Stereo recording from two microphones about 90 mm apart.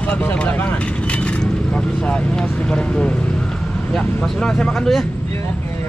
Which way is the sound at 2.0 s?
10° left (ahead or behind).